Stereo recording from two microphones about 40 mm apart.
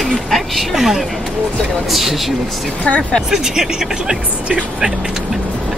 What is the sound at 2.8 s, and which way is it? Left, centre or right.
Speech, left.